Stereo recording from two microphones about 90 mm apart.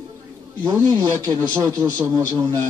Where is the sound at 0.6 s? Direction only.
50° right (ahead or behind).